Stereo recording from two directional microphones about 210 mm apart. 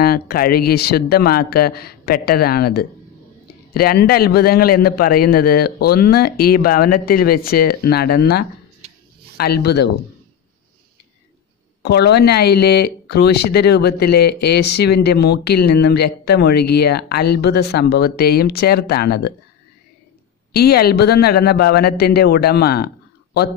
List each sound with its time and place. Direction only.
0.0 s speech: 45° left (ahead or behind)
11.8 s speech: 50° left (ahead or behind)
20.5 s speech: 50° left (ahead or behind)